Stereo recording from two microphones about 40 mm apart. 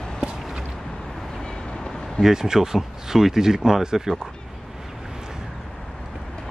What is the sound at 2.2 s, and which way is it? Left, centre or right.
Speech, centre.